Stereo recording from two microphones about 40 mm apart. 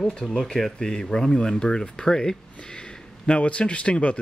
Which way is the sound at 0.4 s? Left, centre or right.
Centre.